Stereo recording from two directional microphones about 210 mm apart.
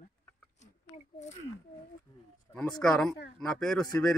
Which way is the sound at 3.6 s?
5° left (ahead or behind).